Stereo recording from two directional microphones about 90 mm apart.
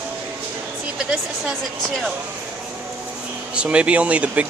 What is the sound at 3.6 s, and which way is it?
Speech, 15° right (ahead or behind).